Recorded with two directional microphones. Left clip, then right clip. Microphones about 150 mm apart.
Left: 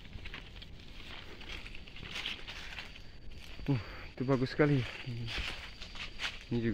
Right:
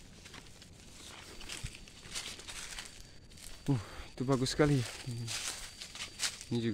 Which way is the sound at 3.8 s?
40° right (ahead or behind).